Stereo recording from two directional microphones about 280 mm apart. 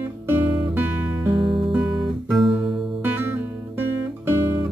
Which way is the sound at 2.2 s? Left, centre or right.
Centre.